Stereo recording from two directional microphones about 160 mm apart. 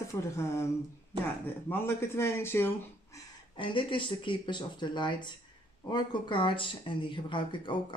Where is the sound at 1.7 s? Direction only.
15° left (ahead or behind).